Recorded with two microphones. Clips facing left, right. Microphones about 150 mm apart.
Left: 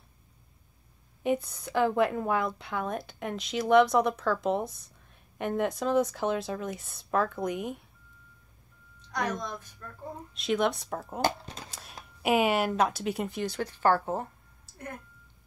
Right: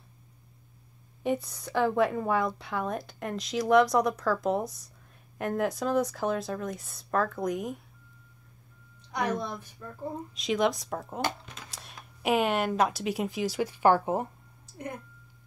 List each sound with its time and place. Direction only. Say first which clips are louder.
1.2 s speech: left 1 dB; centre (ahead or behind)
9.1 s a woman's voice: right 2 dB; 10° right (ahead or behind)
10.3 s speech: even; centre (ahead or behind)
11.1 s speech: left 6 dB; 35° left (ahead or behind)
12.2 s speech: left 1 dB; 5° left (ahead or behind); by 14.2 s 15° right (ahead or behind)